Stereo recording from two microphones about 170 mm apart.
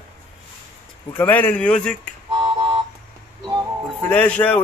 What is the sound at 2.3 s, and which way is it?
Car alarm, 20° right (ahead or behind).